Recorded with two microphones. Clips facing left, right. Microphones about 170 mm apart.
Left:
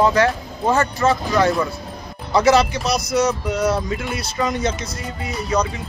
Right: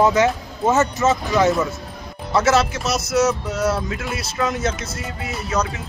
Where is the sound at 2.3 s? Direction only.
Centre (ahead or behind).